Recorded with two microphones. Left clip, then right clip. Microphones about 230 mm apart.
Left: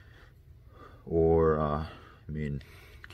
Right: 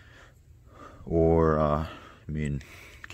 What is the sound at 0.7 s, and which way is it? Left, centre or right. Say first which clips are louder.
Speech: right 2 dB; right.